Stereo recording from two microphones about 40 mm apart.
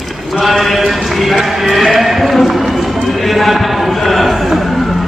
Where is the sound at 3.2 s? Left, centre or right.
Centre.